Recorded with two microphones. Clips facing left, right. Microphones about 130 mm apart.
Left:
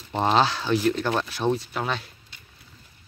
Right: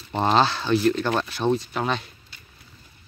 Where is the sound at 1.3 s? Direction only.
10° left (ahead or behind).